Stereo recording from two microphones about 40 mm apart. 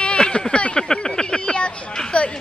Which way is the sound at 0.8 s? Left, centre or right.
Centre.